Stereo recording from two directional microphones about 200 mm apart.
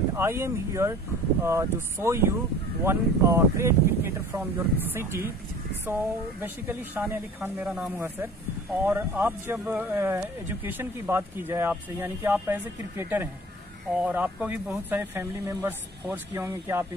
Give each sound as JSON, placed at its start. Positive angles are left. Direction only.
{"t": 0.1, "sound": "speech", "side_deg": -10}